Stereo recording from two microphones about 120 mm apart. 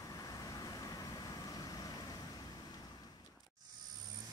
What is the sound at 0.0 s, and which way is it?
Vehicle, 30° left (ahead or behind).